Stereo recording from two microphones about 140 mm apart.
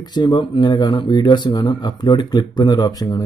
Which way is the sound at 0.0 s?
30° left (ahead or behind).